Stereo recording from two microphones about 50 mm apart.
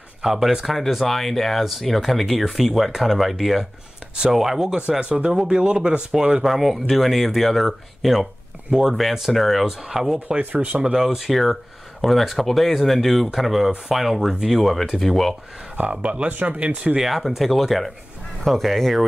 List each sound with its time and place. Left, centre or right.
0.2 s speech: centre
5.0 s speech: right
6.4 s speech: centre
10.4 s speech: right
10.8 s speech: centre
15.7 s speech: right
17.0 s speech: centre